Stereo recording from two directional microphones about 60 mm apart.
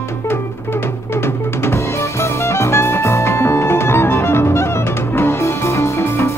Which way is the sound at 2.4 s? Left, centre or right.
Left.